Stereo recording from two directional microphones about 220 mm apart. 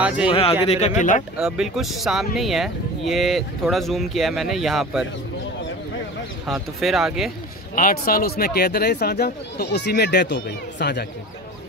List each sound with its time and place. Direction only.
0.3 s speech: 25° left (ahead or behind)
1.4 s speech: centre (ahead or behind)
6.4 s speech: centre (ahead or behind)
7.7 s speech: 40° left (ahead or behind)